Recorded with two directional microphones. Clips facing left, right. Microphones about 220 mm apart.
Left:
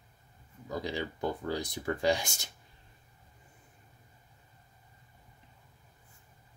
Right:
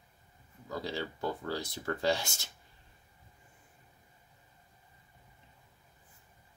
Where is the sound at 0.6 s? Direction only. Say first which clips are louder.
Left 2 dB; 15° left (ahead or behind).